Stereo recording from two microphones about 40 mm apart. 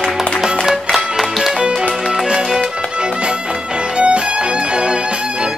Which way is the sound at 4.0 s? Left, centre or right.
Right.